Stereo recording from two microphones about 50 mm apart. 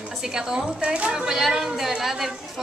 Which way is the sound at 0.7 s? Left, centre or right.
Right.